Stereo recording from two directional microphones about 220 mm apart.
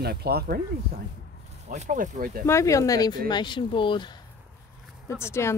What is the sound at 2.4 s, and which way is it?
Speech, 15° left (ahead or behind).